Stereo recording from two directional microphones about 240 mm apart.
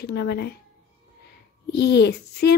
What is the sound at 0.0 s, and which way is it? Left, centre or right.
Speech, left.